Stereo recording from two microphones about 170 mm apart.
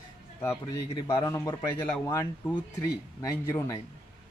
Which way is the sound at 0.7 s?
20° left (ahead or behind).